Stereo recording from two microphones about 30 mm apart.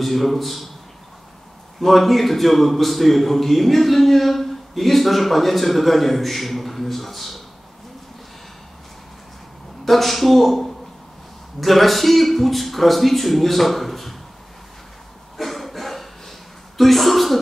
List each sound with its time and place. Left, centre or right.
0.0 s a man's voice: centre
1.8 s a man's voice: centre
9.8 s a man's voice: centre
15.3 s a sound: centre